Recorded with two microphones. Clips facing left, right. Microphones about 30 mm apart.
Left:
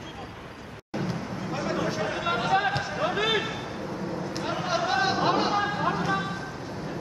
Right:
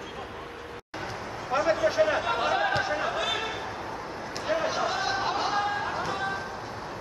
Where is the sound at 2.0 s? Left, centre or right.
Right.